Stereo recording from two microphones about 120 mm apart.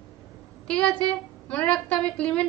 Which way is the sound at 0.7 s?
10° left (ahead or behind).